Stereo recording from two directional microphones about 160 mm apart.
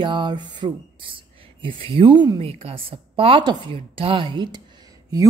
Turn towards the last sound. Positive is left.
turn(degrees=-25)  # may be behind; listen again after turning